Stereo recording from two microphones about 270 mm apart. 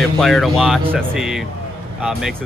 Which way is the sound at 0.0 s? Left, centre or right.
Centre.